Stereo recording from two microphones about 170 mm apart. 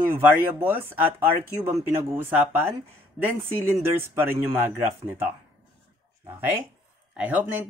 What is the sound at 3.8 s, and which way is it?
Speech, 15° right (ahead or behind).